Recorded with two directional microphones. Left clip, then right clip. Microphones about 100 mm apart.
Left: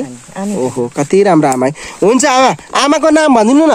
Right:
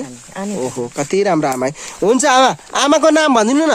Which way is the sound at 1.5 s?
20° left (ahead or behind).